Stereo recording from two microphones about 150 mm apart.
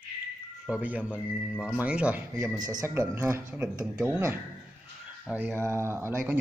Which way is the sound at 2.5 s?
25° right (ahead or behind).